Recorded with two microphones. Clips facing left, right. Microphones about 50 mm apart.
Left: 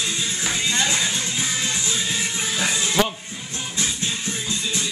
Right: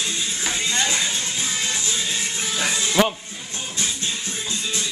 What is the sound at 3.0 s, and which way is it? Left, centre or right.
Speech, centre.